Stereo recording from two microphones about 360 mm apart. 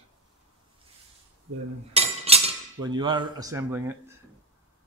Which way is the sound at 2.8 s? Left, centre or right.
Centre.